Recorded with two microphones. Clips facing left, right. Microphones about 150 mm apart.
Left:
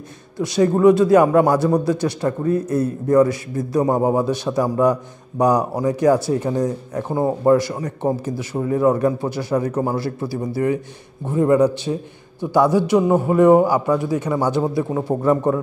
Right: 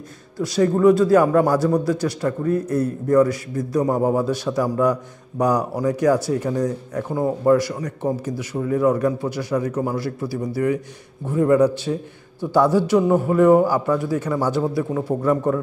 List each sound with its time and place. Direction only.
0.4 s speech: 20° left (ahead or behind)